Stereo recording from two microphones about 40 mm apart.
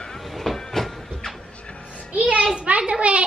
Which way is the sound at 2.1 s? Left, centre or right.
Right.